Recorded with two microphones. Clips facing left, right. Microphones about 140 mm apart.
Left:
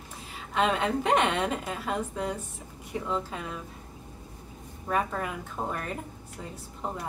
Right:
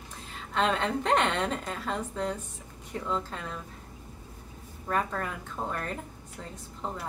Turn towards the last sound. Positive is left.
turn(degrees=10)  # may be behind; listen again after turning